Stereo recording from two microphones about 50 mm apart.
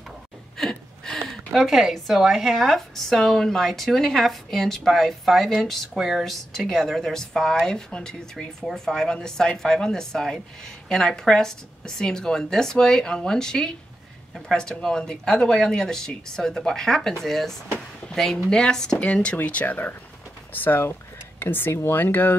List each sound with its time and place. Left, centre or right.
0.6 s a sound: centre
1.5 s a woman's voice: centre
5.9 s a woman's voice: centre
6.5 s speech: centre
18.9 s speech: left